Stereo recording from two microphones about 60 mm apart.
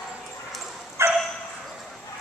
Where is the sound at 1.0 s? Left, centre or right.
Right.